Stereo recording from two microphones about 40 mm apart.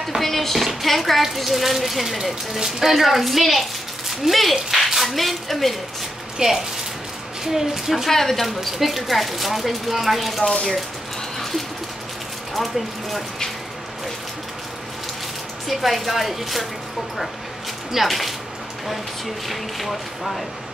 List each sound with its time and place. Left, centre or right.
0.2 s speech: centre
6.3 s a woman's voice: centre
8.1 s speech: centre
8.5 s speech: centre
10.4 s speech: left
12.5 s speech: centre
15.7 s speech: centre
17.9 s speech: centre
19.4 s speech: centre